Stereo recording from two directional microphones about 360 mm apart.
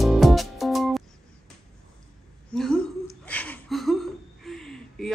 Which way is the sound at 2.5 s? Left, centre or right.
Centre.